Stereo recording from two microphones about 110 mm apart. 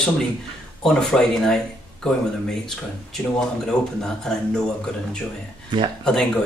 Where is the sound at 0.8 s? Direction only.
5° left (ahead or behind).